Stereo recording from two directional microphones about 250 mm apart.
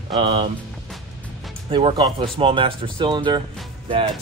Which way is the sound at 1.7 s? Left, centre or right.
Centre.